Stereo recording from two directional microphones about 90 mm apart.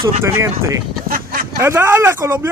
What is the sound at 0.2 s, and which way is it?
Speech, 35° right (ahead or behind).